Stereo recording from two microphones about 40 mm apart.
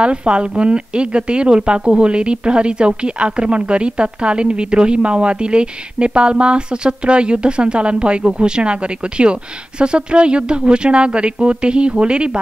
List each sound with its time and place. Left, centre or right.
0.0 s speech: right